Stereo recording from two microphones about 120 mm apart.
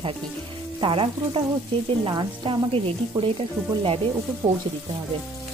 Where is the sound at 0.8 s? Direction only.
50° right (ahead or behind).